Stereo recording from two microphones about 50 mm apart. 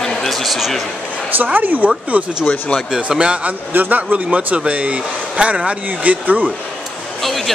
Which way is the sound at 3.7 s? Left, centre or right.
Right.